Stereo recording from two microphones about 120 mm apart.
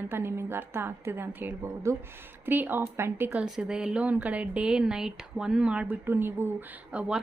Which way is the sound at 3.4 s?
5° right (ahead or behind).